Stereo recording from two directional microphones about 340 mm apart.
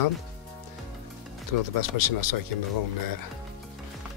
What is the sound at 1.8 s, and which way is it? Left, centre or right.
Speech, left.